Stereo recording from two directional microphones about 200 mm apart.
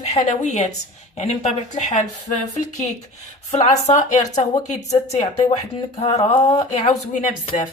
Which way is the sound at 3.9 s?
35° left (ahead or behind).